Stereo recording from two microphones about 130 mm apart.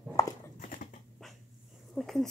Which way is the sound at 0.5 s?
90° left.